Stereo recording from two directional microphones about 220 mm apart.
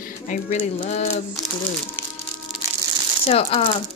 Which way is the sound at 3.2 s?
25° left (ahead or behind).